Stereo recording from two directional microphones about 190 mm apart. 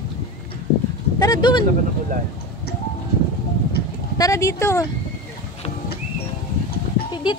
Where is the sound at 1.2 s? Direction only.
20° left (ahead or behind).